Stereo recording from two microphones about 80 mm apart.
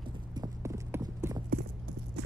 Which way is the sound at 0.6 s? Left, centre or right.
Right.